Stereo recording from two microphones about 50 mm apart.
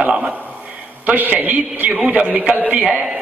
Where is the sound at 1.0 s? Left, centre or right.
Right.